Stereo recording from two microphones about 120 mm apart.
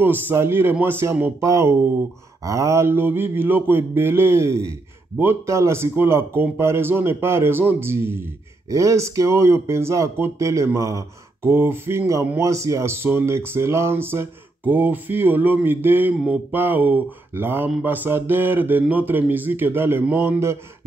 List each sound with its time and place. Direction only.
0.0 s speech: 20° right (ahead or behind)